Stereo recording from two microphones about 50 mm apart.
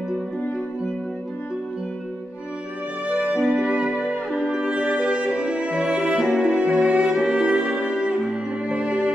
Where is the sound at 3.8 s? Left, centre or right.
Centre.